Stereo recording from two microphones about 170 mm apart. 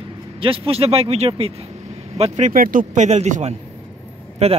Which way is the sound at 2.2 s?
50° right (ahead or behind).